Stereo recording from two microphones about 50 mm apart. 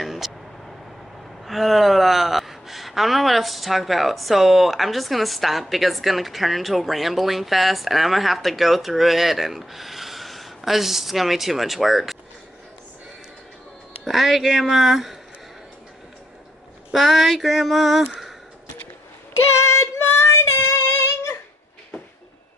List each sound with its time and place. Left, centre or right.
0.0 s a sound: centre
1.4 s speech: centre
14.0 s speech: centre
16.9 s speech: centre
19.6 s female singing: left